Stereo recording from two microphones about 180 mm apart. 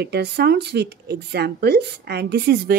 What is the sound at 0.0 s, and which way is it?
Speech, 65° right (ahead or behind).